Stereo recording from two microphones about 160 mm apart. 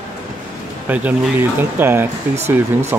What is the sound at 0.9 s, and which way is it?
Speech, 15° right (ahead or behind).